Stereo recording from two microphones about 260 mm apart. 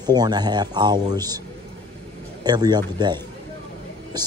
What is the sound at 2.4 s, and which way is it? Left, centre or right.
Speech, centre.